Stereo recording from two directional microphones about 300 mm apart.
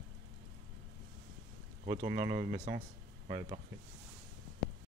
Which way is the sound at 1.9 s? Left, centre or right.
Centre.